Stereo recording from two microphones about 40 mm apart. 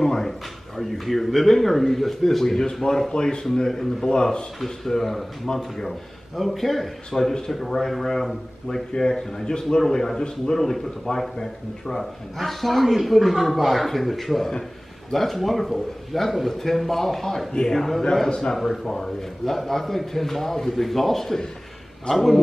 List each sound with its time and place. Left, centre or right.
0.0 s a sound: centre
0.7 s a man's voice: centre
3.1 s a man's voice: left
4.6 s a man's voice: centre
18.3 s a man's voice: centre
18.6 s a man's voice: centre